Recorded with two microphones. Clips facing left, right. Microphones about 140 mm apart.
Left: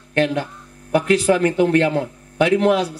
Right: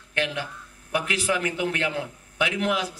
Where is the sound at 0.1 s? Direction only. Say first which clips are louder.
Left 9 dB; 45° left (ahead or behind).